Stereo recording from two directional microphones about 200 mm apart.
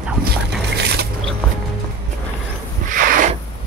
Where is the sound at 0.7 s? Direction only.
55° right (ahead or behind).